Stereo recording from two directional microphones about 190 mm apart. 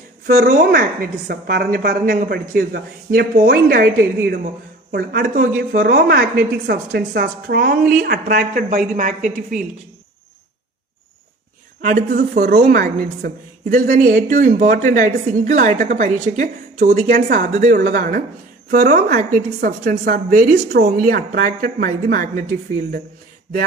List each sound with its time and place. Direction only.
0.4 s a woman's voice: 55° right (ahead or behind)
11.8 s a woman's voice: 50° right (ahead or behind)